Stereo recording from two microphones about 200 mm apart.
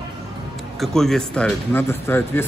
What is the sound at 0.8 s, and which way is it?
Speech, centre (ahead or behind).